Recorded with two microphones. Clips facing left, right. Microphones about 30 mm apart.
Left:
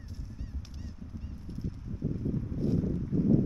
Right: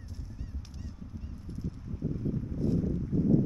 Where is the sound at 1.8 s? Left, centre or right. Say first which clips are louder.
Even; centre.